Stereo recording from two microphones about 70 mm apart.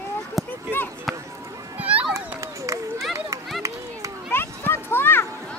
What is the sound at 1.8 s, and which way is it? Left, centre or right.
Children playing, centre.